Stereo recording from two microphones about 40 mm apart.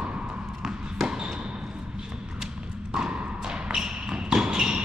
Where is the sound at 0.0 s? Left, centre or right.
Centre.